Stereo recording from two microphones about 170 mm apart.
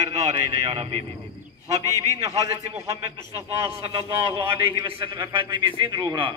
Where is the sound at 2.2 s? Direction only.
20° right (ahead or behind).